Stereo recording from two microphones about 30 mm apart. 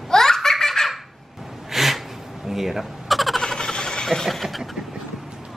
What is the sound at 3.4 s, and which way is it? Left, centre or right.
Vehicle, left.